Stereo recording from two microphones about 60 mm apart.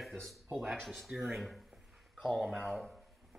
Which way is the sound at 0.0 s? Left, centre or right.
Centre.